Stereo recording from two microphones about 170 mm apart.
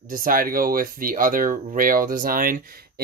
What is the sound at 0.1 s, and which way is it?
Speech, 55° right (ahead or behind).